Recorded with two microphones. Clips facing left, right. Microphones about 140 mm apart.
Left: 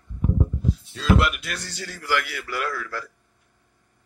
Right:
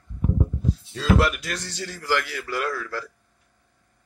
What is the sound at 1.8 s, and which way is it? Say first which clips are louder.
A man's voice: right 1 dB; 25° right (ahead or behind).